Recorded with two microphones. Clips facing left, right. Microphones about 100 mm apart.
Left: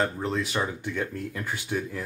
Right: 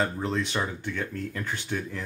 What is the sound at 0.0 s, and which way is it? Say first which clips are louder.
Speech: even; centre (ahead or behind).